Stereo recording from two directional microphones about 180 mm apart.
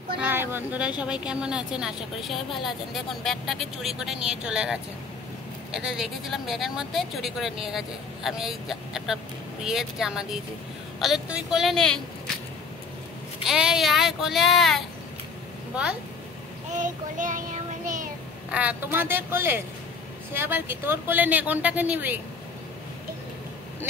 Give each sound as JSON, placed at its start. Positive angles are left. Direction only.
{"t": 0.2, "sound": "speech", "side_deg": -10}
{"t": 13.4, "sound": "speech", "side_deg": -5}
{"t": 16.8, "sound": "child singing", "side_deg": -45}
{"t": 18.5, "sound": "speech", "side_deg": -10}